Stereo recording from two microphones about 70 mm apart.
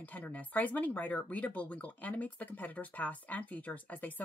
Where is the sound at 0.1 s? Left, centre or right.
Left.